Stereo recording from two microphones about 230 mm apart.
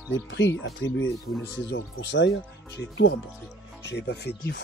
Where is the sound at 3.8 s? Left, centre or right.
Left.